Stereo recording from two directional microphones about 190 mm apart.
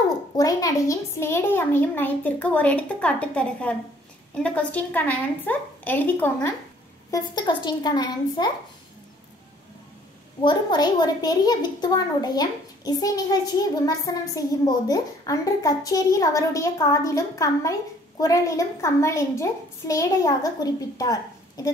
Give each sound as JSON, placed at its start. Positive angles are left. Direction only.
{"t": 0.4, "sound": "a child's voice", "side_deg": 20}
{"t": 10.4, "sound": "a woman's voice", "side_deg": 25}